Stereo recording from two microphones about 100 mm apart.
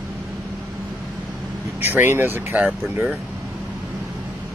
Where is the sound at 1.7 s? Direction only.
20° right (ahead or behind).